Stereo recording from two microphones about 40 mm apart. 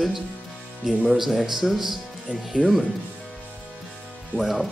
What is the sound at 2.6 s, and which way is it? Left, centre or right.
Speech, left.